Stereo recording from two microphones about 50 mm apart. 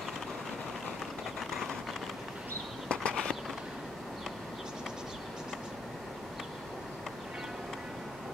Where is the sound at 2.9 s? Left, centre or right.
Centre.